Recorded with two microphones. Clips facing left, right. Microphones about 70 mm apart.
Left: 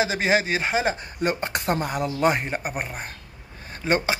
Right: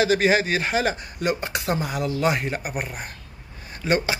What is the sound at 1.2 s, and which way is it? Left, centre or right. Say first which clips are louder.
Speech: even; left.